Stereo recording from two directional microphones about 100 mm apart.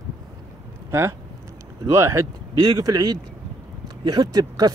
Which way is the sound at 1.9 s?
30° right (ahead or behind).